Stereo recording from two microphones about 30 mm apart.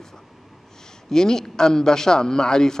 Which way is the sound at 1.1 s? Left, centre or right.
Centre.